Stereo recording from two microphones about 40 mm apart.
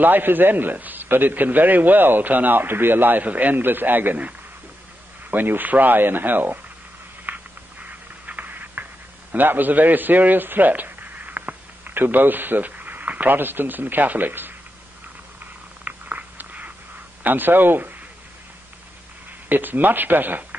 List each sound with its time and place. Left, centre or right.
0.0 s a man's voice: right
3.3 s a man's voice: right
7.3 s a sound: right
9.3 s a man's voice: right
15.8 s a sound: right
17.2 s speech: right
19.5 s a man's voice: right